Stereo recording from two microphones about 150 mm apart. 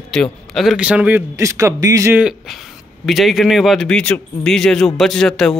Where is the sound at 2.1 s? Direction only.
5° right (ahead or behind).